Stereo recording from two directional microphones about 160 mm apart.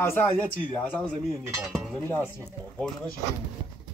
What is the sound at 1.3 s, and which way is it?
A woman's voice, 20° right (ahead or behind).